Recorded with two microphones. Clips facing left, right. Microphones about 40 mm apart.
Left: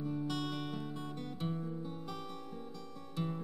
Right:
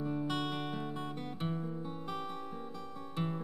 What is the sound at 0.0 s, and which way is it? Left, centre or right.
Music, right.